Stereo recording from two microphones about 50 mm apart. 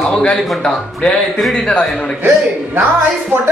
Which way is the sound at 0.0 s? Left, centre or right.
Centre.